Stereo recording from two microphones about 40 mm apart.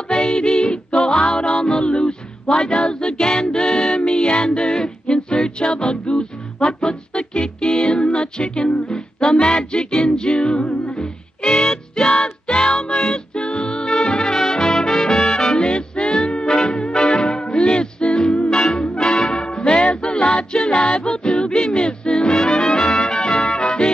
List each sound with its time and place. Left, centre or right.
0.1 s music: left
11.4 s music: centre
12.1 s music: left; by 15.5 s centre
15.5 s music: left
22.4 s brass instrument: centre